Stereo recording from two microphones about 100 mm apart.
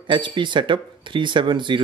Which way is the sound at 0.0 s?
55° right (ahead or behind).